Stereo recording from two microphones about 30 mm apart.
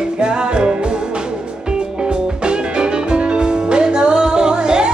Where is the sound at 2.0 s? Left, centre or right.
Right.